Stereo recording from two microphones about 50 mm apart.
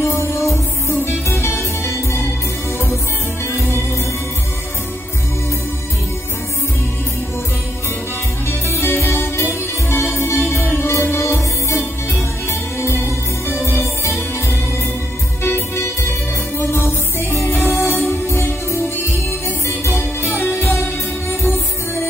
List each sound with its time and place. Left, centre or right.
0.0 s music: left
3.4 s music: left
8.5 s music: left
15.4 s music: left
17.7 s music: left
19.8 s music: left
20.5 s music: left